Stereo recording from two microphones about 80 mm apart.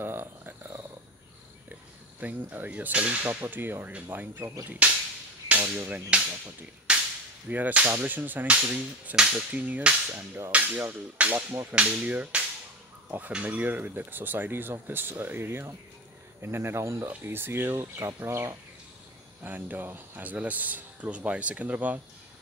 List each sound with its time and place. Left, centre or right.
0.0 s purr: right
1.7 s speech: right
4.8 s whip: centre
5.8 s speech: right
6.9 s whip: centre
7.4 s speech: centre
9.5 s speech: right
17.1 s speech: right